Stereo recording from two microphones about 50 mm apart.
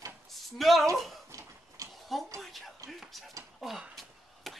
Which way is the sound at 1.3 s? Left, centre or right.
Right.